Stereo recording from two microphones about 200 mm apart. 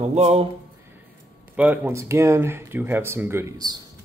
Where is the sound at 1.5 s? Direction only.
10° right (ahead or behind).